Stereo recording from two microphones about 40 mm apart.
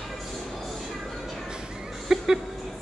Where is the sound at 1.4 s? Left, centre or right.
Centre.